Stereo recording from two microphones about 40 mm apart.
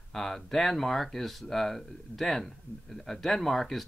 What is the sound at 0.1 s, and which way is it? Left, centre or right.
Speech, centre.